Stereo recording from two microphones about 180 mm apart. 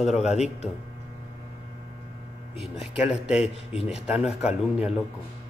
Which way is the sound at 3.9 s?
5° right (ahead or behind).